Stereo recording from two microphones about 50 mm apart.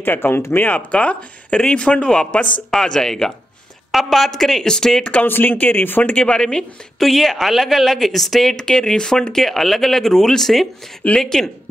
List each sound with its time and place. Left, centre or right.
0.0 s speech: left
0.7 s speech: left
3.9 s speech: centre
5.2 s speech: left
6.1 s speech: left
7.0 s speech: centre